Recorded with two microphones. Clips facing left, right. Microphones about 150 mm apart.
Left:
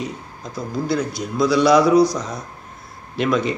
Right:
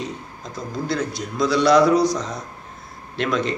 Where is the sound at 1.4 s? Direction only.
5° left (ahead or behind).